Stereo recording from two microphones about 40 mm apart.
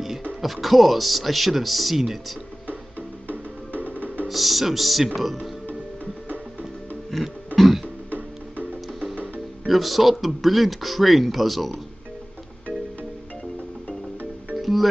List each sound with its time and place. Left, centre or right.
0.4 s speech: centre
3.9 s music: right
4.3 s speech: centre
7.1 s music: centre
9.7 s speech: centre
14.6 s music: centre